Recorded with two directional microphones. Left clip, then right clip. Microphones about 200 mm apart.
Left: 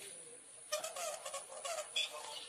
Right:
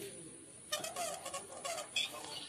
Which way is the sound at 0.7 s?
45° right (ahead or behind).